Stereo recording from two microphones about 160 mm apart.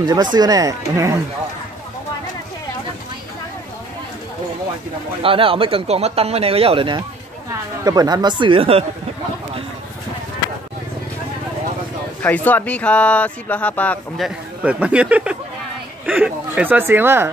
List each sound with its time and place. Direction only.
0.0 s speech: 25° right (ahead or behind)
5.2 s speech: 35° right (ahead or behind)
12.2 s speech: 10° left (ahead or behind)
14.2 s speech: 10° right (ahead or behind)